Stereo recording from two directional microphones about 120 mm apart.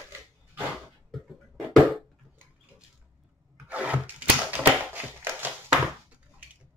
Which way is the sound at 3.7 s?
10° right (ahead or behind).